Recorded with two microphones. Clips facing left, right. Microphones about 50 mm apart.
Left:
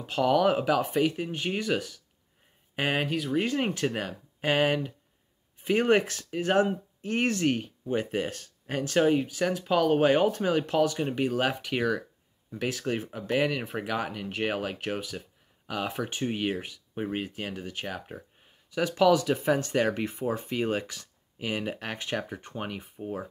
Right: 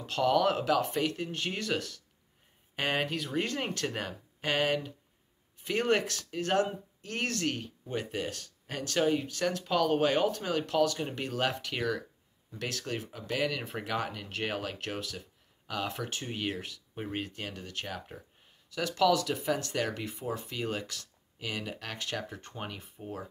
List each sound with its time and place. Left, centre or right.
0.0 s speech: centre
13.7 s speech: centre